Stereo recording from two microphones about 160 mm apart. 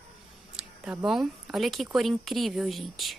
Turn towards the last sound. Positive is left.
turn(degrees=0)  # may be behind; listen again after turning